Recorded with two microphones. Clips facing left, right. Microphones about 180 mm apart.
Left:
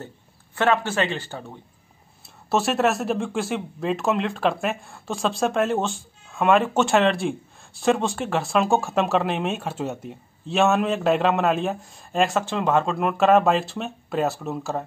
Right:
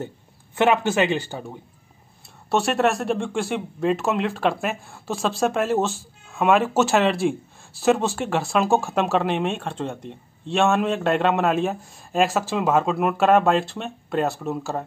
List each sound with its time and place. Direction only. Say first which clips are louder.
0.6 s speech: right 3 dB; 15° right (ahead or behind)
2.5 s speech: right 1 dB; centre (ahead or behind)